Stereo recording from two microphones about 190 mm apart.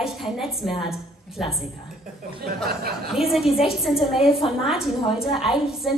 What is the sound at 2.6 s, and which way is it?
Speech, 55° right (ahead or behind).